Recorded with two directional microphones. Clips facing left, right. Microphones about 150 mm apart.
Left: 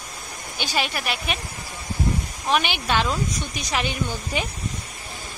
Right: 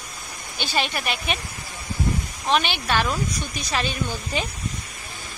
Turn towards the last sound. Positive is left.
turn(degrees=15)  # may be behind; listen again after turning